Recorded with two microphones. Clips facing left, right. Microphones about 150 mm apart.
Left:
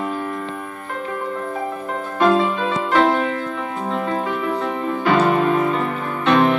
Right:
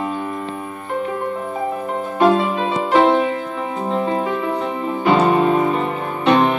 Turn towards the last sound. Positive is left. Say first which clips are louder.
# right 1 dB
turn(degrees=-15)  # may be behind; listen again after turning